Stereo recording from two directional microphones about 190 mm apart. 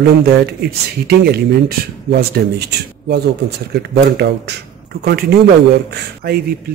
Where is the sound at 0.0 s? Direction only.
60° right (ahead or behind).